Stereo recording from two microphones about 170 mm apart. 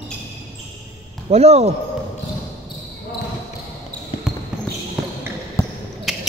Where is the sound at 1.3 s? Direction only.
40° right (ahead or behind).